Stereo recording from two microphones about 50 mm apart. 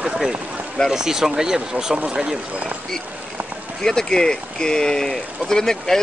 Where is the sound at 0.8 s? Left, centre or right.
Centre.